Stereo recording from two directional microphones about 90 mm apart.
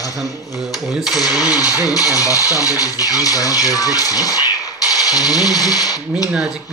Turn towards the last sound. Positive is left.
turn(degrees=-5)  # may be behind; listen again after turning